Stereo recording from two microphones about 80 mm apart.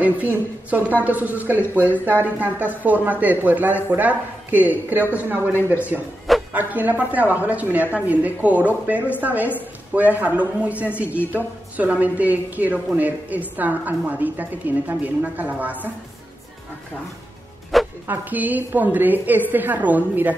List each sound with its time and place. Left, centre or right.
0.0 s speech: right
18.0 s speech: right